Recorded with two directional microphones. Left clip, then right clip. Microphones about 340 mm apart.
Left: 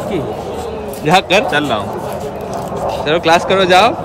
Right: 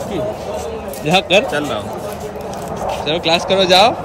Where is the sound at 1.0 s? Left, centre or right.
Centre.